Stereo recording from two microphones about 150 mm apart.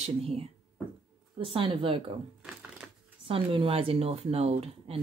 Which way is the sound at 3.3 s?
35° right (ahead or behind).